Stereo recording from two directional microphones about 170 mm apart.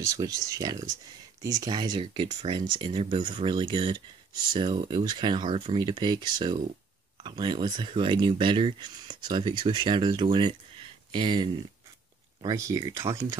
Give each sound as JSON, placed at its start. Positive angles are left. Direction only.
{"t": 0.0, "sound": "speech", "side_deg": -20}